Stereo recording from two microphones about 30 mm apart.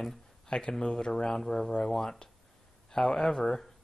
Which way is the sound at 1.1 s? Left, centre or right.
Centre.